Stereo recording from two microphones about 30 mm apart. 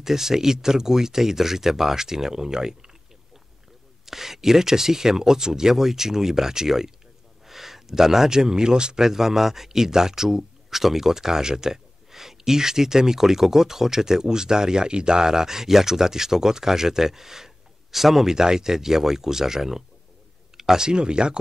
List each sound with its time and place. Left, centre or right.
0.0 s speech: centre
4.0 s speech: centre
18.3 s speech: centre